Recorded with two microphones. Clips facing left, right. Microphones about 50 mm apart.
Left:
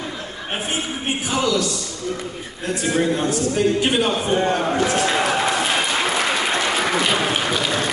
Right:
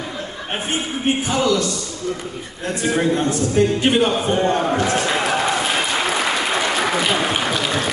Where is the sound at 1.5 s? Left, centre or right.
Centre.